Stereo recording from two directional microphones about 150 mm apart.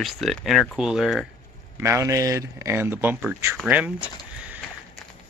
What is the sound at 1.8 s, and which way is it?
Speech, 20° right (ahead or behind).